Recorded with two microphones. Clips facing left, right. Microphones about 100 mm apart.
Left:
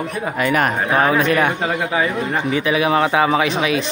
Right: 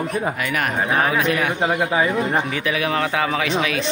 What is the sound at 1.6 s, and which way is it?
Speech, 20° right (ahead or behind).